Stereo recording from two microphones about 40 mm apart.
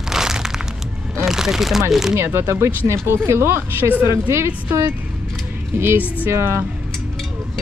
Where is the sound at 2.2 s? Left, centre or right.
Right.